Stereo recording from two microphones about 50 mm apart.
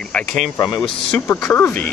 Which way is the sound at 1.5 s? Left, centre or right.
Left.